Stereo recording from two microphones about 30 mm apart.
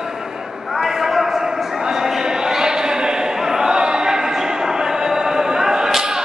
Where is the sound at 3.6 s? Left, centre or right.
Right.